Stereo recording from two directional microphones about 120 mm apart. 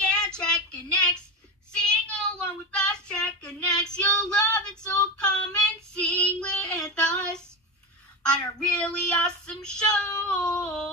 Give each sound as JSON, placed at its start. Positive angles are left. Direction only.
{"t": 0.0, "sound": "child singing", "side_deg": 10}
{"t": 1.7, "sound": "child singing", "side_deg": 5}
{"t": 3.9, "sound": "female singing", "side_deg": 10}
{"t": 5.1, "sound": "child singing", "side_deg": 5}
{"t": 10.2, "sound": "a sound", "side_deg": 10}